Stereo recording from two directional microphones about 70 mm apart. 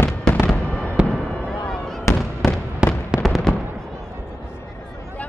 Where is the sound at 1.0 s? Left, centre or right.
Centre.